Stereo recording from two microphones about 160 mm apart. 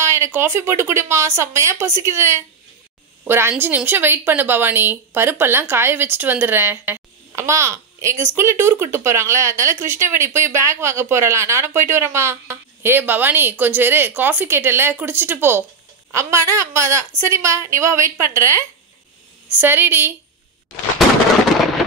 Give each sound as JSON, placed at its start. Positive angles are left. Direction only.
{"t": 0.0, "sound": "speech", "side_deg": -15}